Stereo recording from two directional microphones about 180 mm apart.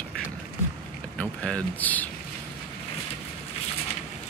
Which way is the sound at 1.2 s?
5° left (ahead or behind).